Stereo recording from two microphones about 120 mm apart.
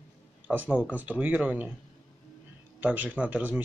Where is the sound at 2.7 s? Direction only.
15° right (ahead or behind).